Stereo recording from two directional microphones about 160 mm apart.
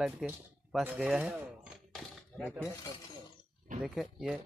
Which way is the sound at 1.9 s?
5° left (ahead or behind).